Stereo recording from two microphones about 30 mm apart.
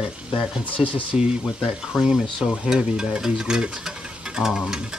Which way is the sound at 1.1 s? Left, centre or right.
Right.